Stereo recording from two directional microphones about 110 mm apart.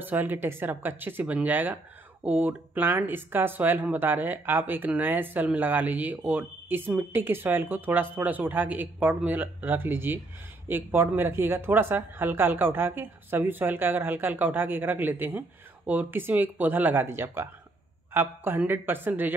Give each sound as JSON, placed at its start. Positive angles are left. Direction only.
{"t": 0.0, "sound": "speech", "side_deg": -20}